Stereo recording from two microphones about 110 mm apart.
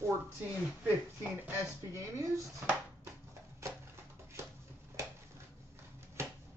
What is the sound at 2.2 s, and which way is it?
Speech, 30° right (ahead or behind).